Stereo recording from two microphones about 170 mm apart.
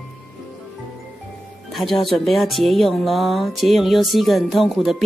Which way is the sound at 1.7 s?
Centre (ahead or behind).